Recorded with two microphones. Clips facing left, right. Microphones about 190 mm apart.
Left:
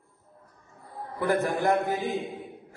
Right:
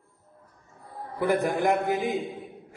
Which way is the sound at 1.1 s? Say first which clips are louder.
Right 1 dB; 15° right (ahead or behind).